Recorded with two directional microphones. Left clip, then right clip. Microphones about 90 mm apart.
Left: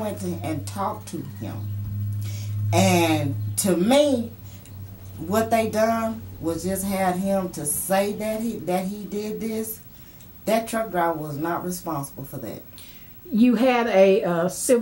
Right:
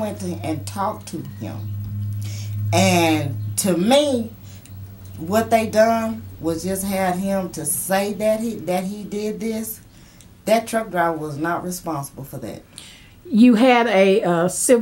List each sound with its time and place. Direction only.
0.0 s speech: 10° right (ahead or behind)
2.2 s a sound: 10° right (ahead or behind)
3.5 s speech: 5° right (ahead or behind)
5.3 s speech: 10° right (ahead or behind)
13.3 s a woman's voice: 40° right (ahead or behind)